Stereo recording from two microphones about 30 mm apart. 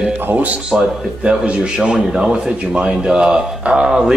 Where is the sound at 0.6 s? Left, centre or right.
Right.